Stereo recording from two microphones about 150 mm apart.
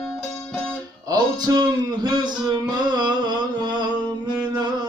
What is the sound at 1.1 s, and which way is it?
Music, 25° right (ahead or behind).